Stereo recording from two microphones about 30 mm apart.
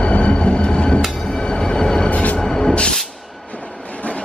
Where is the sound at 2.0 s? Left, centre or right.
Left.